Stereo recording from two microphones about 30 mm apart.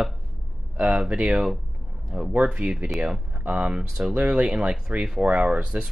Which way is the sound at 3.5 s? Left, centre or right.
Right.